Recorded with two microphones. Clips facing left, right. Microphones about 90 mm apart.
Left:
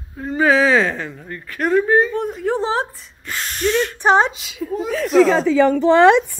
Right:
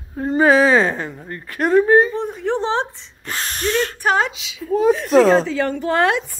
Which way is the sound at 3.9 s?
30° left (ahead or behind).